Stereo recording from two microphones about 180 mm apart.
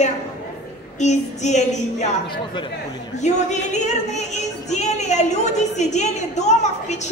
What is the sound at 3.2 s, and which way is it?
Speech, 40° left (ahead or behind).